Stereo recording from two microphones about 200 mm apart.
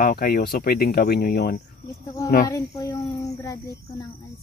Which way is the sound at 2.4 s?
15° left (ahead or behind).